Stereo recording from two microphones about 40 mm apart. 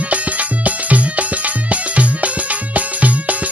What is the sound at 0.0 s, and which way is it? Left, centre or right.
Music, right.